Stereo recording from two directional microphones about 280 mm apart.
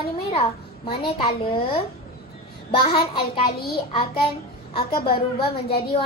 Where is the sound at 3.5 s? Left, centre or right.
Left.